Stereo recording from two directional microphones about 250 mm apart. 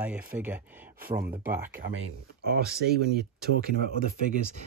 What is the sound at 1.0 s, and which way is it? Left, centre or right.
Speech, right.